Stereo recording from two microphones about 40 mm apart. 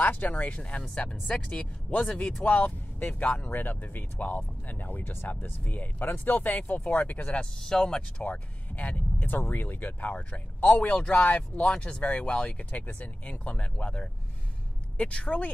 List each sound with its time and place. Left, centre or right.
0.0 s speech: left
7.2 s speech: left
7.6 s speech: centre
8.2 s speech: left
9.2 s speech: left
10.9 s speech: left
11.2 s speech: left
12.0 s speech: left